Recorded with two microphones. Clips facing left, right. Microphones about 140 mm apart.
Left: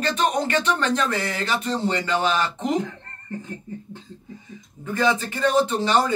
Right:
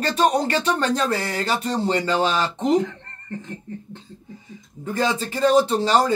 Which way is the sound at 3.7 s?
5° left (ahead or behind).